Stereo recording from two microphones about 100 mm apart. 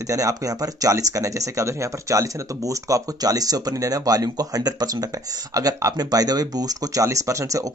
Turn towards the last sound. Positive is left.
turn(degrees=-35)  # may be behind; listen again after turning